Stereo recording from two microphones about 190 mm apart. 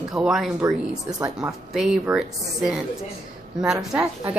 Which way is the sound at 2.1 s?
Centre (ahead or behind).